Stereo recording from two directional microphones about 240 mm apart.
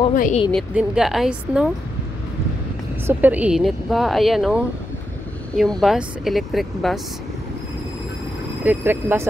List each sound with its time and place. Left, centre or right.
0.1 s speech: left
0.5 s speech: centre
3.1 s speech: centre
8.6 s speech: centre